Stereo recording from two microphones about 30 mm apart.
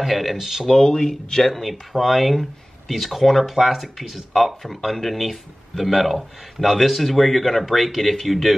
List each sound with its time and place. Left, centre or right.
0.0 s speech: centre
0.4 s speech: centre
0.8 s speech: left
1.4 s speech: centre